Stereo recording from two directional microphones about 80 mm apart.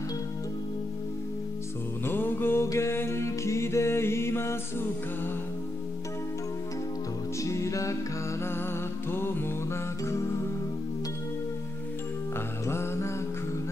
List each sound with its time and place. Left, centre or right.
2.0 s music: left
7.3 s music: left
9.1 s music: left
12.6 s music: left